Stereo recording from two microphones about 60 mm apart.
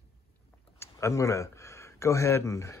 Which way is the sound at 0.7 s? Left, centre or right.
Left.